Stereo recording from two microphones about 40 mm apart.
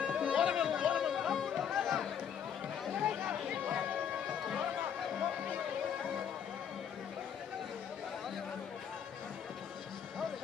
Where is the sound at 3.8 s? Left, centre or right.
Right.